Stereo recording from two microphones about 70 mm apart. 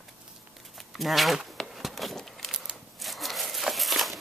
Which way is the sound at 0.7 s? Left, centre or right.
Centre.